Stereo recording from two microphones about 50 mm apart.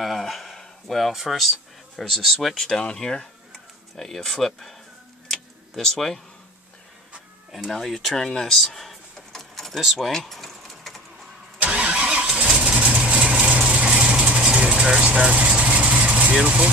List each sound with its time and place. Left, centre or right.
0.0 s speech: centre
5.3 s tick-tock: centre
7.7 s speech: centre
11.6 s vehicle: right
12.3 s vehicle: centre; by 16.3 s right
16.4 s speech: right